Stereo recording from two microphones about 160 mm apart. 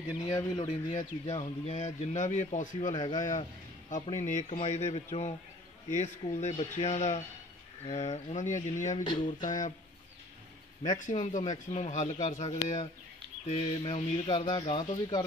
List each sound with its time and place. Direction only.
0.3 s a man's voice: 25° left (ahead or behind)
0.8 s speech: 50° left (ahead or behind)
2.9 s a man's voice: 25° left (ahead or behind)
3.9 s speech: 45° left (ahead or behind)
11.0 s speech: 50° left (ahead or behind); by 15.2 s 30° left (ahead or behind)